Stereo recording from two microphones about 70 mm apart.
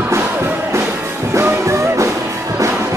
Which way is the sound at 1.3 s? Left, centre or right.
Right.